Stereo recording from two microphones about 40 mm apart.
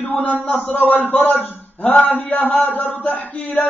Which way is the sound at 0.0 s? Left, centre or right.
Left.